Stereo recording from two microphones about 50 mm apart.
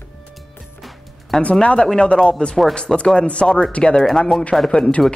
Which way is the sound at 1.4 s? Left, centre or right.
Left.